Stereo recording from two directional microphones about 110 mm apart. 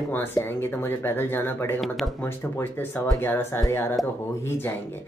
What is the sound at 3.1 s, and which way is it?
Speech, 20° left (ahead or behind).